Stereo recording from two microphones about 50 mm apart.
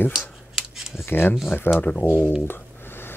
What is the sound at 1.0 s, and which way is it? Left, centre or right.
Speech, left.